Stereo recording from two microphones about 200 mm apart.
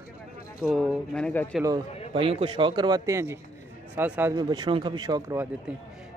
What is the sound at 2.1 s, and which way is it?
Speech, 30° right (ahead or behind).